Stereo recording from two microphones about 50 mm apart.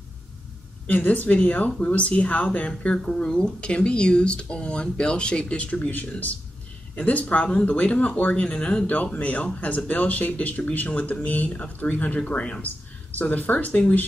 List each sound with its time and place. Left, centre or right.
0.8 s speech: left